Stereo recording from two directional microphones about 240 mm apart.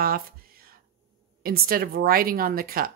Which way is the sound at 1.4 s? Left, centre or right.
Right.